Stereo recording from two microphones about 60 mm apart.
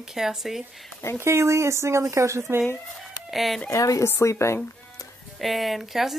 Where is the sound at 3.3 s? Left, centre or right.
Centre.